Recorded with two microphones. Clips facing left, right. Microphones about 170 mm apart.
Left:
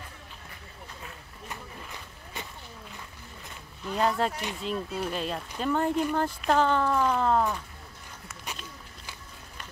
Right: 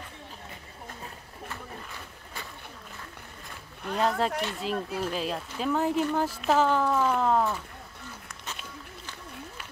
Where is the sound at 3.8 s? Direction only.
60° right (ahead or behind).